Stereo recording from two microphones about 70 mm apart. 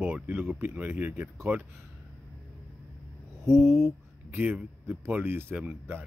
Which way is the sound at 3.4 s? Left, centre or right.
Right.